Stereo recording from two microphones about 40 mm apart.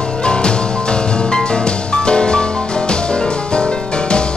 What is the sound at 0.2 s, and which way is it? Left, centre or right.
Music, left.